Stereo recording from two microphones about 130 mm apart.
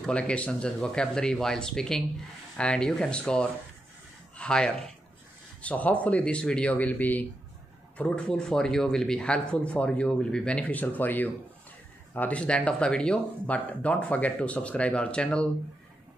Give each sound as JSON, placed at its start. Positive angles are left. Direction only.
{"t": 0.0, "sound": "speech", "side_deg": 10}